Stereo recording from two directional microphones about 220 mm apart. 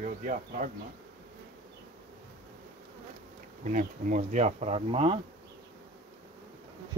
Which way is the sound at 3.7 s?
35° right (ahead or behind).